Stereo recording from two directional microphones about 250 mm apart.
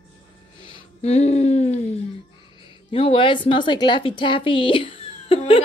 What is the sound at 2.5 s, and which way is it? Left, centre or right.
A woman's voice, left.